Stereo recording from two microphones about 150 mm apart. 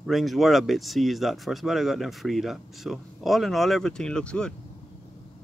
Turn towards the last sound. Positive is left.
turn(degrees=5)  # may be behind; listen again after turning